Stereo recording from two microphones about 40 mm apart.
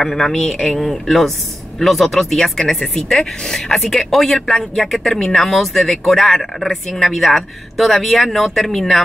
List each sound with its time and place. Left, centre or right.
0.0 s speech: centre
3.7 s speech: centre